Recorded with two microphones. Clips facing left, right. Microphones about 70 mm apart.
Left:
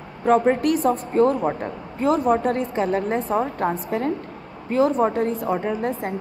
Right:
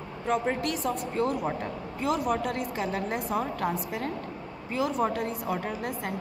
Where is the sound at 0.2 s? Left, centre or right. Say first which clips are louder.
Left 10 dB; left.